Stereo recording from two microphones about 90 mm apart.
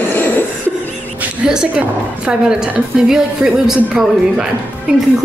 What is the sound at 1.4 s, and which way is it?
A woman's voice, 10° right (ahead or behind).